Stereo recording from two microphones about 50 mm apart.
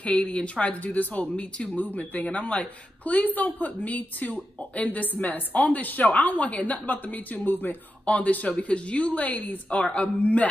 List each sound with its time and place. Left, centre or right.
0.0 s speech: left
8.0 s a woman's voice: left